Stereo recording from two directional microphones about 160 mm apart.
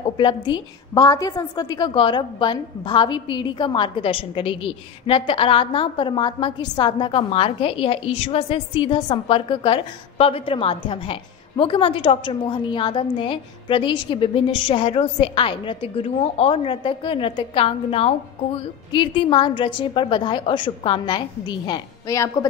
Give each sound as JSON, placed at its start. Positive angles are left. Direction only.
{"t": 0.2, "sound": "a woman's voice", "side_deg": 30}